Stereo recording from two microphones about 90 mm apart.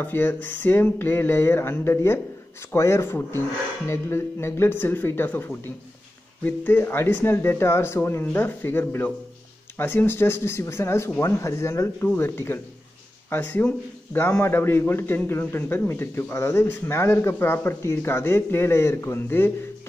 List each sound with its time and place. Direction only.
0.0 s a man's voice: 25° left (ahead or behind)